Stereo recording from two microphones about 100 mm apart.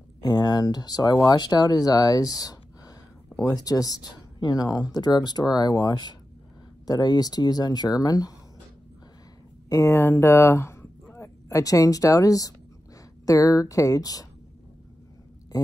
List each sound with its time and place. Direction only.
0.2 s speech: 40° left (ahead or behind)
9.7 s speech: 30° left (ahead or behind)
15.5 s speech: 40° left (ahead or behind)